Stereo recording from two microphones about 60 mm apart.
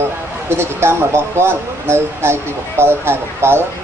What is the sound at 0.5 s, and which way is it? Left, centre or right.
Speech, right.